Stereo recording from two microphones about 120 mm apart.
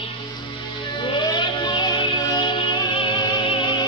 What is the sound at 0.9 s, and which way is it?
Music, 40° left (ahead or behind).